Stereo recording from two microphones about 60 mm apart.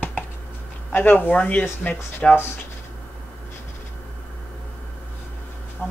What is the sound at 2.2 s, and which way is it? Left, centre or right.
Speech, centre.